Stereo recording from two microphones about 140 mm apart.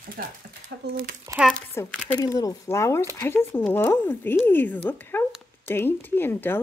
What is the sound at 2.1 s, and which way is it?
Speech, 25° left (ahead or behind).